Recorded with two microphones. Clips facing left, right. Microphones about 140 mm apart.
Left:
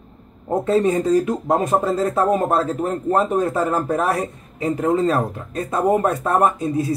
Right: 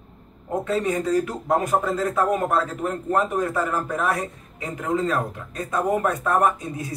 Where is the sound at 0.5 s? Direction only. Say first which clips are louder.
Left 6 dB; 30° left (ahead or behind).